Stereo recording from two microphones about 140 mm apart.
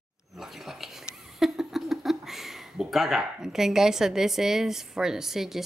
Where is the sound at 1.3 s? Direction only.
Centre (ahead or behind).